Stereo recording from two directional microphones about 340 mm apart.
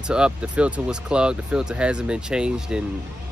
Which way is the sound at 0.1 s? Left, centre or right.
Centre.